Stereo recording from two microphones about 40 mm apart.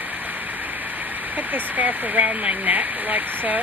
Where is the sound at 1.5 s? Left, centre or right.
Right.